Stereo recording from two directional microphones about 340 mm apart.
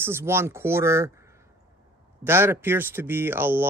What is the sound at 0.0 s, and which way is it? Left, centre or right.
Speech, centre.